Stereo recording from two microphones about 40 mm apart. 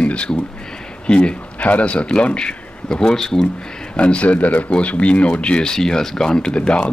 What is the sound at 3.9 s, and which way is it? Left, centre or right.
A man's voice, left.